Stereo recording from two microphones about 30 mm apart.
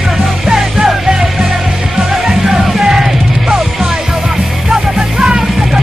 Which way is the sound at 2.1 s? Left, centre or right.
Centre.